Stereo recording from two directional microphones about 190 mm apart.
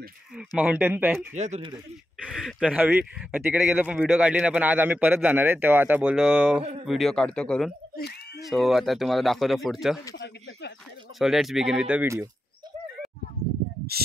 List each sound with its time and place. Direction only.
0.4 s speech: 5° right (ahead or behind)
1.3 s a man's voice: 35° right (ahead or behind)
2.2 s speech: centre (ahead or behind)
10.1 s a sound: 65° left (ahead or behind)
11.1 s speech: centre (ahead or behind)
13.9 s speech: 55° right (ahead or behind)